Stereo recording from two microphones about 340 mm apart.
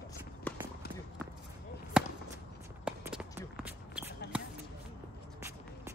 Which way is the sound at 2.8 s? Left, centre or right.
Centre.